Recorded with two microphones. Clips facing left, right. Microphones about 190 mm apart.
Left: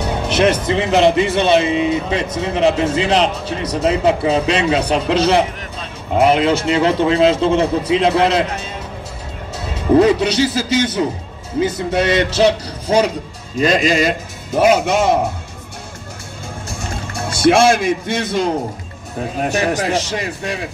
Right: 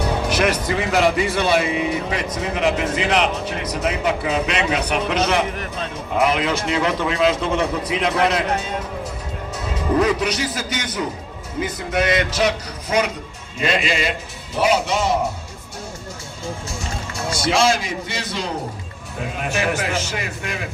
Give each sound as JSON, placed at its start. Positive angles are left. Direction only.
{"t": 0.0, "sound": "speech", "side_deg": 25}
{"t": 9.9, "sound": "a man's voice", "side_deg": 30}
{"t": 17.4, "sound": "a man's voice", "side_deg": 55}
{"t": 19.3, "sound": "speech", "side_deg": 35}